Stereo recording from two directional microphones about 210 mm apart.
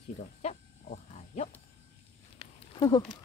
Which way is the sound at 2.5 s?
20° left (ahead or behind).